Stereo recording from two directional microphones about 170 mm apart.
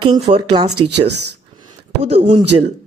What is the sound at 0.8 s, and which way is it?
Speech, 80° right.